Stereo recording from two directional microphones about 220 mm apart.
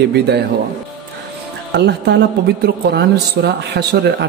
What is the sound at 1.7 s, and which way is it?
A woman's voice, 50° right (ahead or behind).